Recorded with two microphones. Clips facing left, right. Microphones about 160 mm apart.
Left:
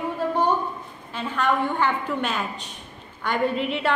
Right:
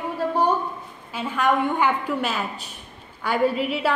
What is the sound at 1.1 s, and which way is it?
A woman's voice, 10° right (ahead or behind).